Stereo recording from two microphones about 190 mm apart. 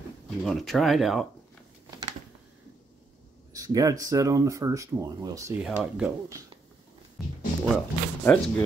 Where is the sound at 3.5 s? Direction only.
20° right (ahead or behind).